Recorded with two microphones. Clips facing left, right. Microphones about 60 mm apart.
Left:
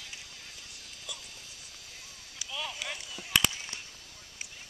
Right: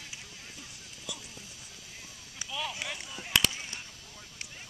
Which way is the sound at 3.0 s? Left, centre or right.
Right.